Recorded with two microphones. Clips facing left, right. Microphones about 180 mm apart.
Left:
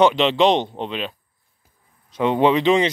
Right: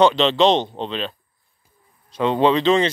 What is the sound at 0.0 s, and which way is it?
A man's voice, 15° left (ahead or behind).